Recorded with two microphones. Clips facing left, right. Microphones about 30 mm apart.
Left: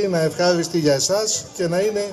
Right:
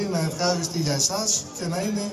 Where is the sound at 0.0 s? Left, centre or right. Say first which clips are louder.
Left 7 dB; left.